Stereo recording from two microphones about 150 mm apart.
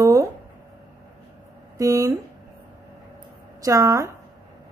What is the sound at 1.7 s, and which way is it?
Speech, 20° right (ahead or behind).